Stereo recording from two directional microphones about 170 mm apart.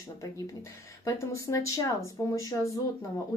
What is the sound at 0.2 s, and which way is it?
A woman's voice, 15° left (ahead or behind).